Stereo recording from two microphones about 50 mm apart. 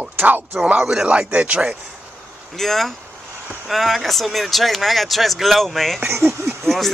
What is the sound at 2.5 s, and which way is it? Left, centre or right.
Speech, centre.